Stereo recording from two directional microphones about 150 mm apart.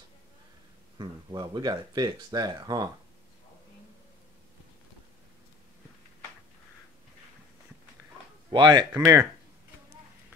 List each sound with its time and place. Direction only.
0.9 s speech: 30° right (ahead or behind)
8.5 s speech: 30° right (ahead or behind)